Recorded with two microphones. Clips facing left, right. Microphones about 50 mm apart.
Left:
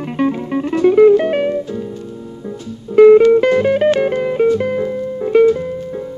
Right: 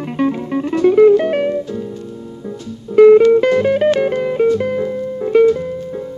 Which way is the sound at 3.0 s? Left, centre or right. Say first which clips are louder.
Even; centre.